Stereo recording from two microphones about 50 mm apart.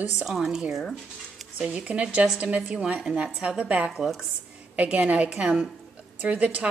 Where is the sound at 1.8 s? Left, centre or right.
Right.